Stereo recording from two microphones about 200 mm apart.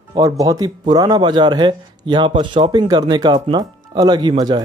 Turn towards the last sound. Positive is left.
turn(degrees=-20)  # may be behind; listen again after turning